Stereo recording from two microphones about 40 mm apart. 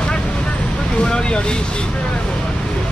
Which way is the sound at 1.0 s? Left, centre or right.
Left.